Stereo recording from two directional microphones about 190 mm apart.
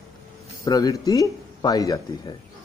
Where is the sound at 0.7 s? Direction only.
20° left (ahead or behind).